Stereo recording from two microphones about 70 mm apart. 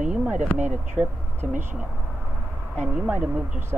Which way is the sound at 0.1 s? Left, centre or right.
Centre.